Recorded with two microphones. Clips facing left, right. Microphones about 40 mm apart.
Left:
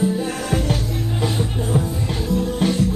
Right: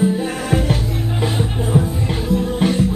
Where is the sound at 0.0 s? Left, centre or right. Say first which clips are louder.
Right 3 dB; centre.